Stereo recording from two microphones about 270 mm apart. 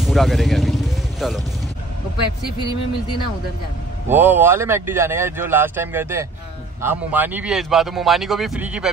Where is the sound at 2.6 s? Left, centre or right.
Centre.